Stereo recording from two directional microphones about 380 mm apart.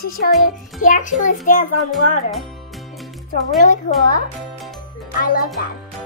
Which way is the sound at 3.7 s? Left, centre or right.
Left.